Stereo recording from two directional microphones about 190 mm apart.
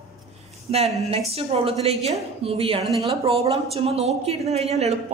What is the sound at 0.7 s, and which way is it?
A woman's voice, 30° right (ahead or behind).